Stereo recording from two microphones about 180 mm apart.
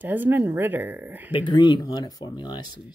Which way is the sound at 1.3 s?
25° left (ahead or behind).